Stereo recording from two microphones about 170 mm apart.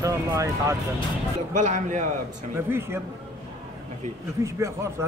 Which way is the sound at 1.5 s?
45° right (ahead or behind).